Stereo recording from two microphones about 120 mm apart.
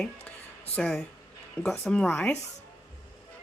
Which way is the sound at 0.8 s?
5° left (ahead or behind).